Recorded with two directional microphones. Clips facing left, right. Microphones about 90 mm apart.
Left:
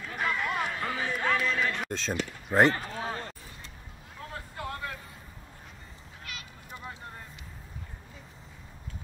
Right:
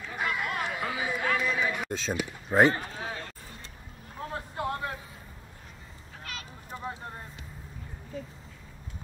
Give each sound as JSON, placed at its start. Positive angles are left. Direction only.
{"t": 0.0, "sound": "run", "side_deg": -5}
{"t": 0.7, "sound": "a sound", "side_deg": -10}
{"t": 3.0, "sound": "a sound", "side_deg": 35}
{"t": 4.2, "sound": "vehicle", "side_deg": -30}
{"t": 6.2, "sound": "goose", "side_deg": -40}
{"t": 6.8, "sound": "vehicle", "side_deg": -25}